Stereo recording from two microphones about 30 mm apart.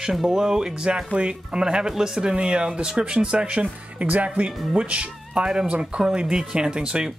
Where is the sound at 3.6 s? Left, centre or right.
Right.